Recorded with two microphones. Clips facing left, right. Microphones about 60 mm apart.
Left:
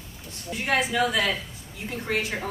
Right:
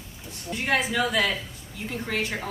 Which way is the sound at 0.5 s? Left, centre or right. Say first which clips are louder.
Even; centre.